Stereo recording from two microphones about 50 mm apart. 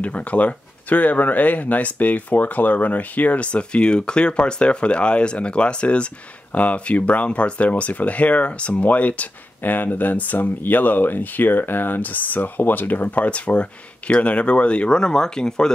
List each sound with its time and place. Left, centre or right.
0.0 s speech: left; by 15.7 s centre